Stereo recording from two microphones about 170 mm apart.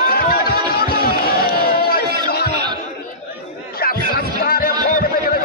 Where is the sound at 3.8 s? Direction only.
65° left (ahead or behind).